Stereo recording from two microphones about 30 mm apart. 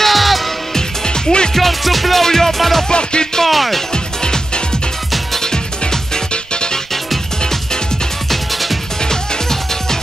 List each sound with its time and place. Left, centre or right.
0.0 s music: centre
0.7 s music: left
1.5 s music: centre
2.2 s music: centre
2.9 s music: left
3.4 s music: centre
3.9 s music: left
8.3 s music: centre
9.1 s music: centre